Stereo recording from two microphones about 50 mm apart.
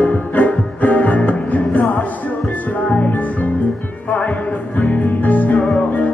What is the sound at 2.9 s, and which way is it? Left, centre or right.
Music, left.